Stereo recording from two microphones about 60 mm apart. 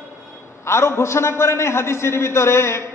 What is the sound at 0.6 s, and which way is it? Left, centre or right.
A man's voice, left.